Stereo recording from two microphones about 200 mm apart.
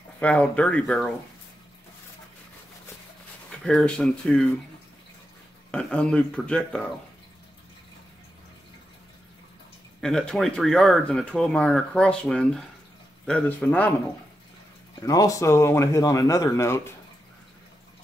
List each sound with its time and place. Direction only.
0.2 s speech: 5° left (ahead or behind)
3.6 s speech: 5° left (ahead or behind)
5.7 s speech: 5° left (ahead or behind)
9.9 s speech: 5° left (ahead or behind)
15.0 s speech: 15° left (ahead or behind)